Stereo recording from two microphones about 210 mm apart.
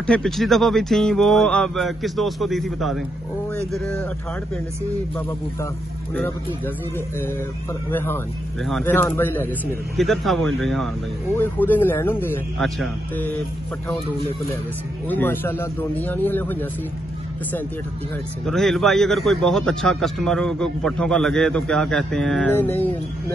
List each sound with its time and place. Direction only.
0.0 s a man's voice: 5° left (ahead or behind)
6.1 s speech: 10° left (ahead or behind)
7.9 s a man's voice: 10° left (ahead or behind)
15.0 s speech: 10° left (ahead or behind)
18.4 s a man's voice: centre (ahead or behind)